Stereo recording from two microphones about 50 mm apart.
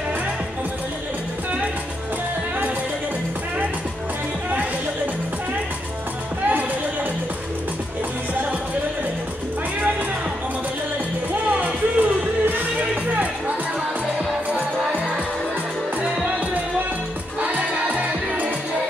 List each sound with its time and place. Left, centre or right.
11.6 s music: right
17.4 s music: right